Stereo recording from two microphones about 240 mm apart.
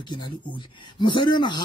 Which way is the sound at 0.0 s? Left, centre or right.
Centre.